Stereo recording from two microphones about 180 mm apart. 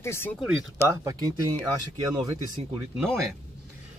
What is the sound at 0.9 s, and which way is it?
Speech, 20° right (ahead or behind).